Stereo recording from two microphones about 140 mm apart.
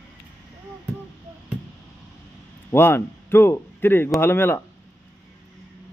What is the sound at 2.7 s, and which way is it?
Speech, 15° left (ahead or behind).